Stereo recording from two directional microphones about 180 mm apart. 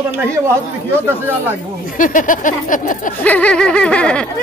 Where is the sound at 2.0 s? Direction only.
45° left (ahead or behind).